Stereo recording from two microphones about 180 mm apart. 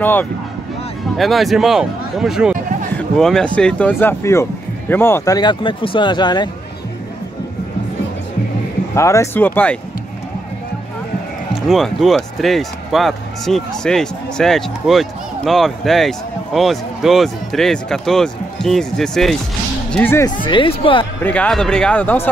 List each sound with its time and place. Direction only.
0.0 s speech: 10° left (ahead or behind)
1.1 s speech: centre (ahead or behind); by 6.5 s 25° left (ahead or behind)
8.9 s speech: 15° left (ahead or behind)
11.7 s speech: centre (ahead or behind)
20.4 s speech: 30° left (ahead or behind)
21.2 s speech: 5° left (ahead or behind)